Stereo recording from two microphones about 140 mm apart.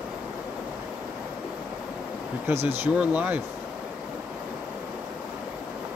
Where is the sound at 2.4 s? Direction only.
15° right (ahead or behind).